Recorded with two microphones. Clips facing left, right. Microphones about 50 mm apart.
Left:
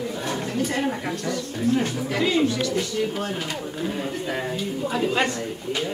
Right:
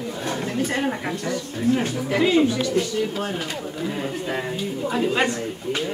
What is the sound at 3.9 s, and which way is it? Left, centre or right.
Speech, centre.